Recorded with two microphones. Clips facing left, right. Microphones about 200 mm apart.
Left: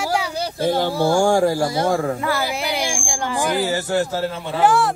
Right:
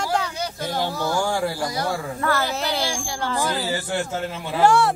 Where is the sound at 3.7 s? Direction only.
40° left (ahead or behind).